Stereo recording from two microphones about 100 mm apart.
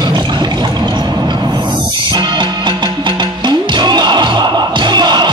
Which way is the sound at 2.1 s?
50° right (ahead or behind).